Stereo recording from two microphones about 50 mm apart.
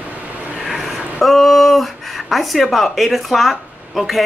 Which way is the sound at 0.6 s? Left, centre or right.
Centre.